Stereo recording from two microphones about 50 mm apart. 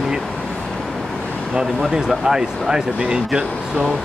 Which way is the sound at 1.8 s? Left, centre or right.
Centre.